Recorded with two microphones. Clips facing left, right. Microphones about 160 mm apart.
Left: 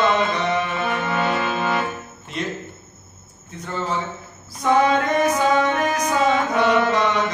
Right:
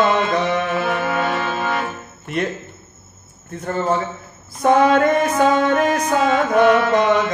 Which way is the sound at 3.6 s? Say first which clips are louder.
Right 5 dB; 50° right (ahead or behind).